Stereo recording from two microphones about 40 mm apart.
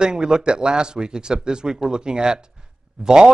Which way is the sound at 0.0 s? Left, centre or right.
Centre.